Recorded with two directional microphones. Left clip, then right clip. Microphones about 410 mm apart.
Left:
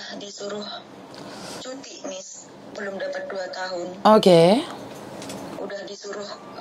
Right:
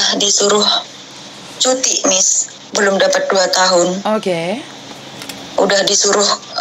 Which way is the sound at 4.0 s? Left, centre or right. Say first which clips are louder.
Left 3 dB; left.